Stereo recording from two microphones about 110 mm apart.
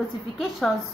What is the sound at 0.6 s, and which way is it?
Speech, 5° left (ahead or behind).